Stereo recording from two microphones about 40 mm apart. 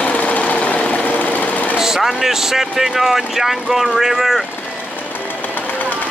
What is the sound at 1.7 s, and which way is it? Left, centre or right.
Speech, centre.